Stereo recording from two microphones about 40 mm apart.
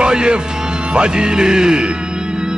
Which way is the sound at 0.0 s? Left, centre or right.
Right.